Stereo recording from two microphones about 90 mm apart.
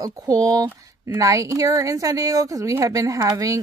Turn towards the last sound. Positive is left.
turn(degrees=-40)  # may be behind; listen again after turning